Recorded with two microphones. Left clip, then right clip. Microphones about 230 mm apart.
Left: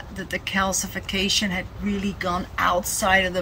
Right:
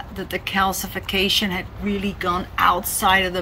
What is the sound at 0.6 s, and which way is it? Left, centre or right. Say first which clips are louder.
A woman's voice: right 4 dB; centre.